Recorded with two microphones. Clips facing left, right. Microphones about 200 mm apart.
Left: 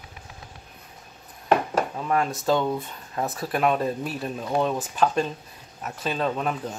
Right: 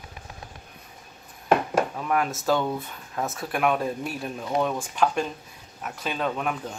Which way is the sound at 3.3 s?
Centre (ahead or behind).